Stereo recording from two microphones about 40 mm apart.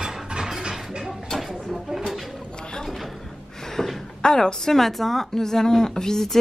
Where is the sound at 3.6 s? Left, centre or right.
Centre.